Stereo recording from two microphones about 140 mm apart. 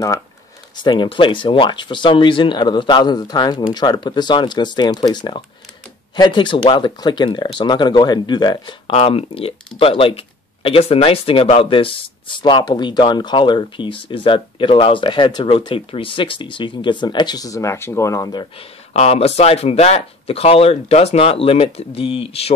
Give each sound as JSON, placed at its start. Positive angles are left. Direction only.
{"t": 0.7, "sound": "speech", "side_deg": 35}
{"t": 18.9, "sound": "speech", "side_deg": 45}